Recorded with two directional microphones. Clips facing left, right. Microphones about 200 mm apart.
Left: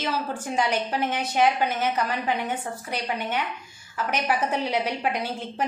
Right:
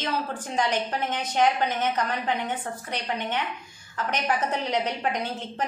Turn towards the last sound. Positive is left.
turn(degrees=10)  # may be behind; listen again after turning